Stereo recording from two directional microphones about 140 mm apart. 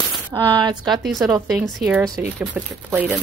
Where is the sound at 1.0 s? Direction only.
Centre (ahead or behind).